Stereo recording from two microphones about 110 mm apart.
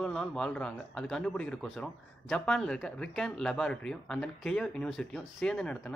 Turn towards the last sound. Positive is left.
turn(degrees=10)  # may be behind; listen again after turning